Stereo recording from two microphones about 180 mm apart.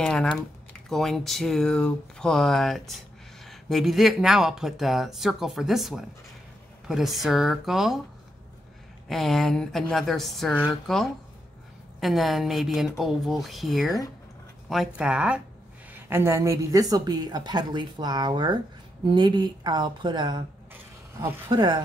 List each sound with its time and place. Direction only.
0.0 s speech: 5° left (ahead or behind)
9.1 s speech: centre (ahead or behind)
15.0 s a woman's voice: 5° right (ahead or behind); by 20.4 s 25° right (ahead or behind)
21.5 s a woman's voice: 25° right (ahead or behind)